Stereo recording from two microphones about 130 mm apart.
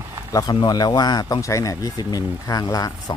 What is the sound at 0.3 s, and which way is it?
Speech, 30° left (ahead or behind).